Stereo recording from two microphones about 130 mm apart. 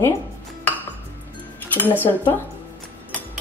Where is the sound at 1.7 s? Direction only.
15° left (ahead or behind).